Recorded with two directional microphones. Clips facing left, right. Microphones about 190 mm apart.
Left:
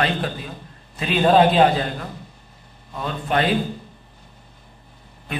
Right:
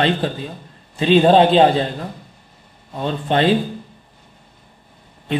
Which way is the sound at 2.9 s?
30° right (ahead or behind).